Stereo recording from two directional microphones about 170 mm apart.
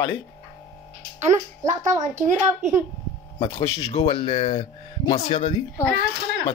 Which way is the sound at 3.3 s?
35° left (ahead or behind).